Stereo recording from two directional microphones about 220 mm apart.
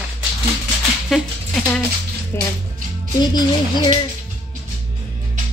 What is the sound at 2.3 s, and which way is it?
Speech, 10° left (ahead or behind).